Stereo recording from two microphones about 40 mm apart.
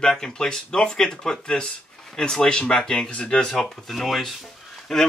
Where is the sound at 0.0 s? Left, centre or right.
Centre.